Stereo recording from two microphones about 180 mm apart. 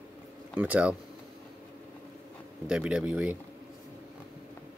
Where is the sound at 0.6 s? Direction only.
10° right (ahead or behind).